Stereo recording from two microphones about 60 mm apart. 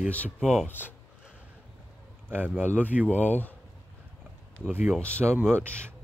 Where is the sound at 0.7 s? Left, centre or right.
Left.